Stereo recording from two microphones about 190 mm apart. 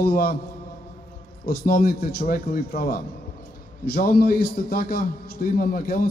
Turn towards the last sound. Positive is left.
turn(degrees=50)  # may be behind; listen again after turning